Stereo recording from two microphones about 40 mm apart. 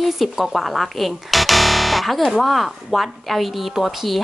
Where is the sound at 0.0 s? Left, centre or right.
Centre.